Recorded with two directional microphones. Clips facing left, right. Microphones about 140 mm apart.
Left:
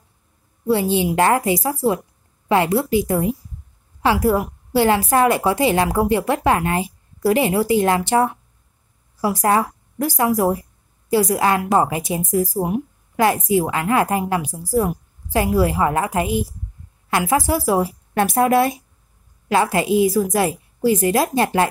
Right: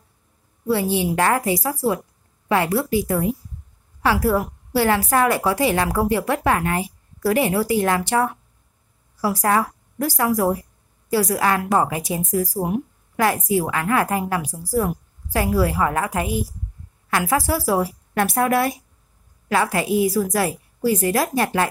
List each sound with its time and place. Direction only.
0.7 s a woman's voice: 20° left (ahead or behind)